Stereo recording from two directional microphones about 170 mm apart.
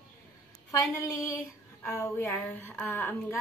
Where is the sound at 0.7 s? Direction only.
20° left (ahead or behind).